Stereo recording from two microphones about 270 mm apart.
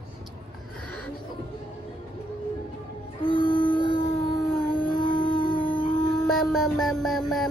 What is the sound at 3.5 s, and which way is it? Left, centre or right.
Howl, centre.